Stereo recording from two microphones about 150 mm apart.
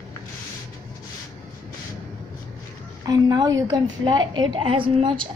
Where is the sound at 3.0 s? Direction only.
25° right (ahead or behind).